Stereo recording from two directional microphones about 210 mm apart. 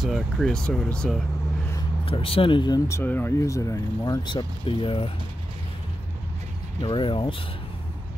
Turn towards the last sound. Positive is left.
turn(degrees=25)  # may be behind; listen again after turning